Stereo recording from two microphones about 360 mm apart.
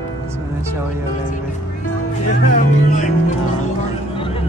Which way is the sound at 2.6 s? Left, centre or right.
Left.